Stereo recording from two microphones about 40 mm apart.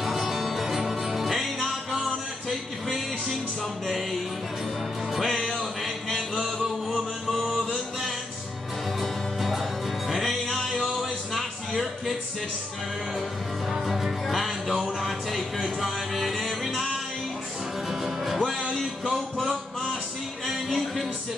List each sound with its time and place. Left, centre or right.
0.0 s music: centre
3.8 s music: centre
7.2 s music: centre
10.4 s music: centre
10.7 s music: centre
13.7 s music: centre
14.7 s music: centre
15.0 s music: centre
20.4 s music: centre